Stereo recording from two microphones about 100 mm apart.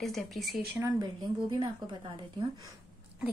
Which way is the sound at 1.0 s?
45° right (ahead or behind).